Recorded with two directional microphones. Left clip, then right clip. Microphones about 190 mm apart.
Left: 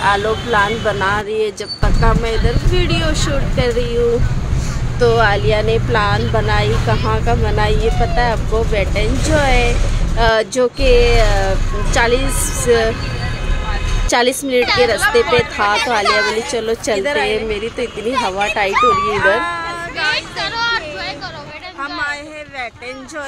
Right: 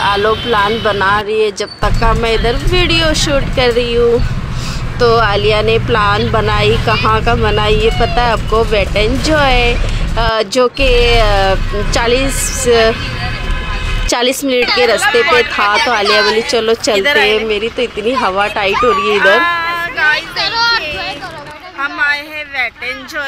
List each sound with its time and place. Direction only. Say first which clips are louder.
0.0 s speech: right 3 dB; 15° right (ahead or behind)
1.8 s speech: right 4 dB; 15° right (ahead or behind)
14.0 s speech: right 1 dB; 10° right (ahead or behind)
16.1 s speech: right 4 dB; 25° left (ahead or behind)
16.4 s speech: right 6 dB; 5° right (ahead or behind)
19.4 s a sound: right 7 dB; 5° left (ahead or behind)
20.2 s speech: right 5 dB; 50° right (ahead or behind)
21.8 s a sound: right 8 dB; centre (ahead or behind)